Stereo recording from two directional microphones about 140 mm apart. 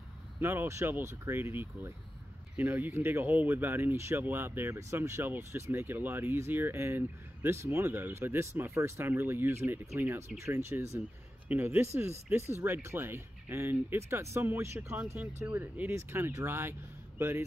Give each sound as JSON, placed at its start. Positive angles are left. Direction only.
{"t": 0.4, "sound": "speech", "side_deg": -15}